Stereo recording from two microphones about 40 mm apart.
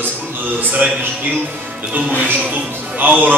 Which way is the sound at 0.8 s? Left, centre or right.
Right.